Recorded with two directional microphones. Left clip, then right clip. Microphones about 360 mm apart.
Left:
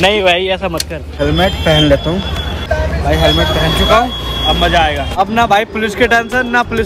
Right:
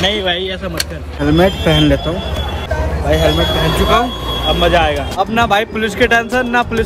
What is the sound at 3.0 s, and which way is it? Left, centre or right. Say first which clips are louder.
Speech: left 1 dB; centre.